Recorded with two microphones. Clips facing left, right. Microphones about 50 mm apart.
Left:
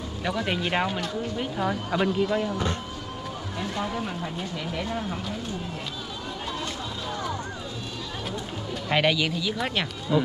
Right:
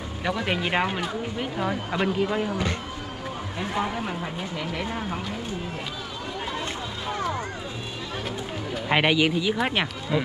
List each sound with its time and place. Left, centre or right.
0.2 s speech: centre
2.5 s speech: right
3.5 s speech: right
4.8 s speech: right
8.8 s speech: right